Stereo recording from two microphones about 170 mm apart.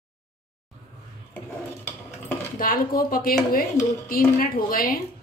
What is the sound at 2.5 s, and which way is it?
A woman's voice, 55° left (ahead or behind).